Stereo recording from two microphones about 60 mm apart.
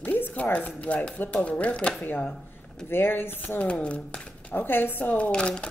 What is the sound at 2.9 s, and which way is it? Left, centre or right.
Speech, left.